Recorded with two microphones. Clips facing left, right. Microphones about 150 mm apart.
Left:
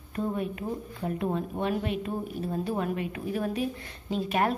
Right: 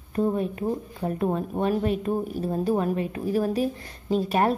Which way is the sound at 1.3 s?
45° right (ahead or behind).